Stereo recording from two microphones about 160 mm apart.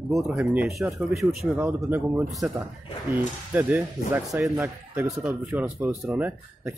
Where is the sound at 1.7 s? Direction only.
15° right (ahead or behind).